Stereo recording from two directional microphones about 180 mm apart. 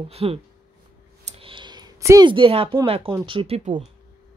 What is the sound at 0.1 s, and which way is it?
Speech, 35° right (ahead or behind).